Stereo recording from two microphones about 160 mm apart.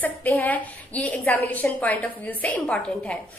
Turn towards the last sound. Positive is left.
turn(degrees=5)  # may be behind; listen again after turning